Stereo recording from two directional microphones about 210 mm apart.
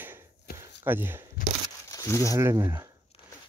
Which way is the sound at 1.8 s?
15° left (ahead or behind).